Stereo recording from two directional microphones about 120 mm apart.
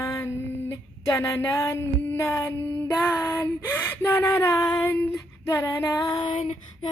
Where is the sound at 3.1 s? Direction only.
30° left (ahead or behind).